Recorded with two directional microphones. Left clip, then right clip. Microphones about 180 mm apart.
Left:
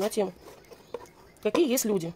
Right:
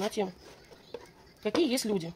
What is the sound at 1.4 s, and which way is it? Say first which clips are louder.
Speech: left 4 dB; 50° left (ahead or behind).